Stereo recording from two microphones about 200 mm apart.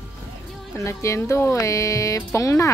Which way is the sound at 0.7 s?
15° left (ahead or behind).